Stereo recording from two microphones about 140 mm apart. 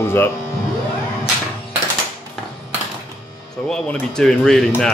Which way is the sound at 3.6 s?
5° left (ahead or behind).